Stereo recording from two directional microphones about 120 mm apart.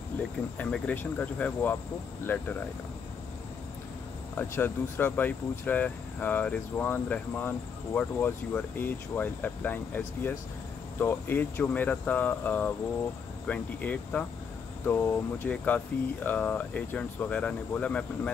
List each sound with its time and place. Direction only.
0.6 s speech: 10° left (ahead or behind)
4.4 s speech: 15° left (ahead or behind)